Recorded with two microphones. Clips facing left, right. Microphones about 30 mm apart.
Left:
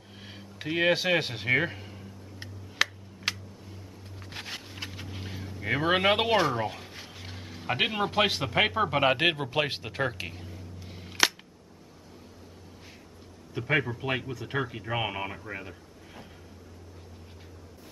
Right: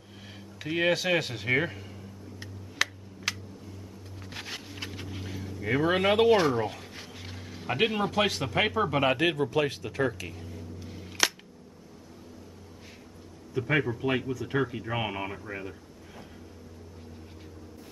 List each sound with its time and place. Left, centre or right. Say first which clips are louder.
0.2 s a sound: left 1 dB; centre
4.2 s vehicle: even; centre
5.2 s vehicle: right 1 dB; centre
6.3 s a sound: right 1 dB; centre
8.1 s speech: left 1 dB; left
9.1 s a man's voice: even; left
10.4 s a sound: right 3 dB; centre
10.9 s cap gun: right 2 dB; left
13.6 s speech: right 1 dB; centre